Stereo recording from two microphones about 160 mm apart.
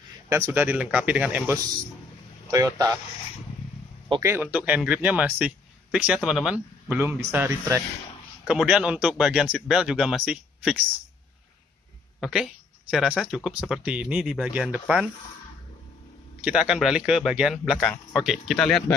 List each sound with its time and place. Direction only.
0.3 s speech: 15° right (ahead or behind)
2.5 s speech: 20° right (ahead or behind)
4.2 s speech: 15° right (ahead or behind)
8.5 s speech: 5° right (ahead or behind)
12.2 s speech: 5° right (ahead or behind)
16.4 s speech: 5° right (ahead or behind)